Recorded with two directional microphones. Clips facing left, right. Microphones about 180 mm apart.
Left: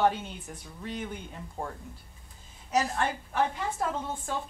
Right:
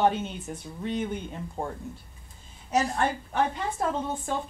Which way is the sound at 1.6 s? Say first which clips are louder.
Right 3 dB; 25° right (ahead or behind).